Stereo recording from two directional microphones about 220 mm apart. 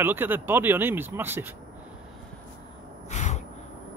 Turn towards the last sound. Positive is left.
turn(degrees=30)  # may be behind; listen again after turning